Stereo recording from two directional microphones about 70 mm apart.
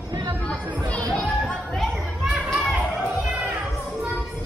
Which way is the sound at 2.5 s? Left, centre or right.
Centre.